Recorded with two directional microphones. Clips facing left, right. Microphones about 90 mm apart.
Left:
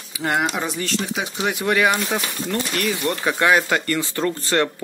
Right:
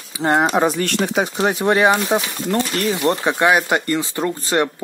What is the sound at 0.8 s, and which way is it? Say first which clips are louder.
Speech: right 6 dB; 55° right (ahead or behind).